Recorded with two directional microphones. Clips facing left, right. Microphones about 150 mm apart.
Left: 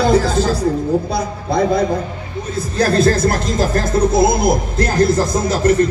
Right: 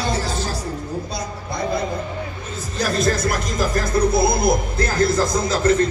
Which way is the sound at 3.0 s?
30° left (ahead or behind).